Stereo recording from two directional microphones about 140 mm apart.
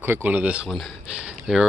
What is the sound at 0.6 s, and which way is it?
Speech, centre (ahead or behind).